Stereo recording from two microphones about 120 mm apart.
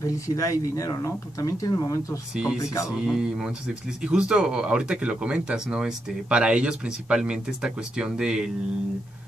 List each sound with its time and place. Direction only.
0.0 s speech: 30° left (ahead or behind)
2.3 s speech: 5° right (ahead or behind)
2.6 s speech: 25° left (ahead or behind)
3.1 s speech: 5° right (ahead or behind)